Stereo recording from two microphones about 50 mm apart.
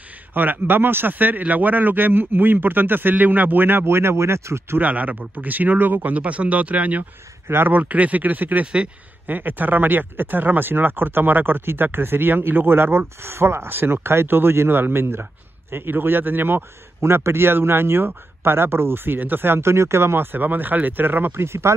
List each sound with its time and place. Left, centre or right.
0.3 s a man's voice: right
4.7 s speech: right
7.4 s speech: right
7.7 s a man's voice: right
17.0 s a man's voice: right